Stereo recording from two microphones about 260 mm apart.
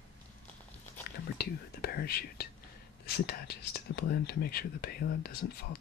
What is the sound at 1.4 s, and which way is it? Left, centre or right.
Whispering, left.